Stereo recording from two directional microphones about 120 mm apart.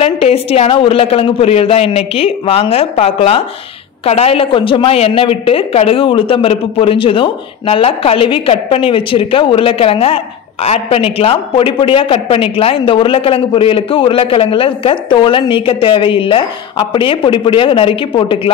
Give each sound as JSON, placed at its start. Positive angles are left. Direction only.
{"t": 0.0, "sound": "a woman's voice", "side_deg": 55}